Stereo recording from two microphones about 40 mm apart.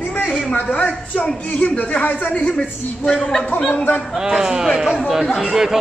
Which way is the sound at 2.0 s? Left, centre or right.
Left.